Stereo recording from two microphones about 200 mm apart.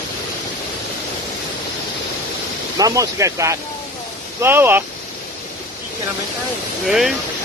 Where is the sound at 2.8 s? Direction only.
15° right (ahead or behind).